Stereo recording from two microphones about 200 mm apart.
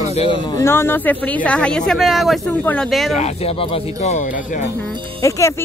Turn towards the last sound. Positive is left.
turn(degrees=15)  # may be behind; listen again after turning